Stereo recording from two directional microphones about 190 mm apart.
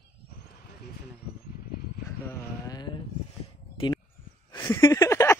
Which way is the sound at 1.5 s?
50° left (ahead or behind).